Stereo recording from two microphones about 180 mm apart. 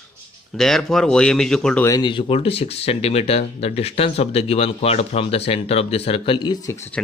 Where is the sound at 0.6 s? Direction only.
Centre (ahead or behind).